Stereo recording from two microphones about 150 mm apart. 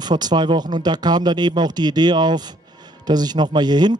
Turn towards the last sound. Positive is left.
turn(degrees=-30)  # may be behind; listen again after turning